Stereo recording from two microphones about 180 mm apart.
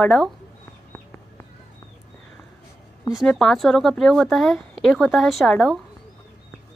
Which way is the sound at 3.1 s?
Centre (ahead or behind).